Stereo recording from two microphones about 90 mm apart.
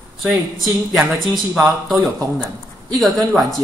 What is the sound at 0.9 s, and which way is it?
Speech, 5° right (ahead or behind).